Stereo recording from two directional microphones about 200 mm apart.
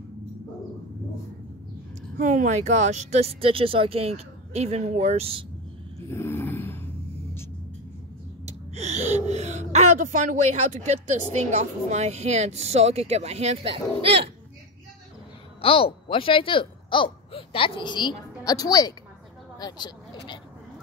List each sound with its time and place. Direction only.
2.1 s speech: 40° right (ahead or behind)
5.9 s a sound: 10° left (ahead or behind)
8.5 s speech: 35° right (ahead or behind)
15.6 s speech: 25° left (ahead or behind)